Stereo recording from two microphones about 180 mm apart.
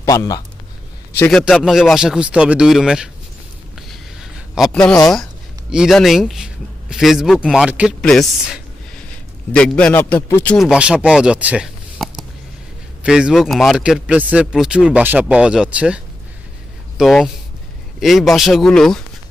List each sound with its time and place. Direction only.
0.0 s speech: 20° left (ahead or behind)
1.4 s speech: 5° right (ahead or behind)
3.9 s a sound: centre (ahead or behind)
5.7 s a man's voice: centre (ahead or behind)